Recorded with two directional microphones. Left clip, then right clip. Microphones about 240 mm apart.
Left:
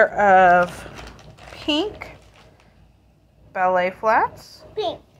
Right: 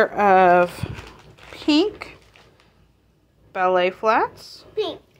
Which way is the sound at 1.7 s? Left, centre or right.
Right.